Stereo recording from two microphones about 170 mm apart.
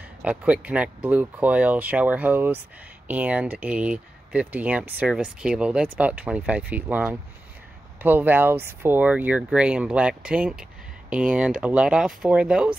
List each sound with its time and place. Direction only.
0.2 s speech: 5° right (ahead or behind)